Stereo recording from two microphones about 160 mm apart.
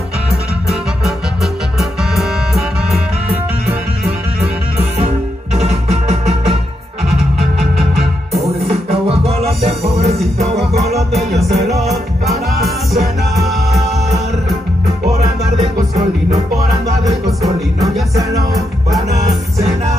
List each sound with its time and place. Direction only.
0.7 s music: centre (ahead or behind)
5.0 s music: 40° right (ahead or behind)
8.6 s music: 40° right (ahead or behind)
11.1 s music: centre (ahead or behind)
15.0 s music: 45° right (ahead or behind)
18.3 s music: 20° right (ahead or behind)